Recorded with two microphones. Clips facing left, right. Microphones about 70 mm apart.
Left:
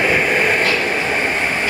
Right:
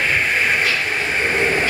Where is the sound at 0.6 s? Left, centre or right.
Left.